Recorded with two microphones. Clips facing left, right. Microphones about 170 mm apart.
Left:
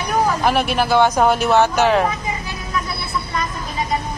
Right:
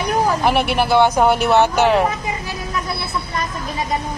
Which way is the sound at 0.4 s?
15° right (ahead or behind).